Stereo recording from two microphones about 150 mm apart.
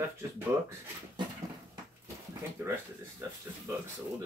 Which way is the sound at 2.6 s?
15° right (ahead or behind).